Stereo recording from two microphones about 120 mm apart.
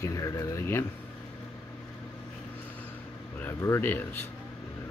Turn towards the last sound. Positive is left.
turn(degrees=15)  # may be behind; listen again after turning